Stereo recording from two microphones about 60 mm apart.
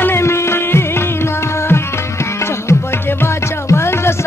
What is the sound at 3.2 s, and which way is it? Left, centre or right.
Music, left.